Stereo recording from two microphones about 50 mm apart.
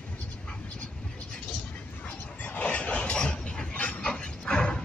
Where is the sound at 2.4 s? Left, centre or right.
Left.